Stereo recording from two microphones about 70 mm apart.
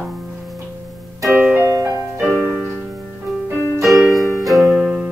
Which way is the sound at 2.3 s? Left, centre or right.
Right.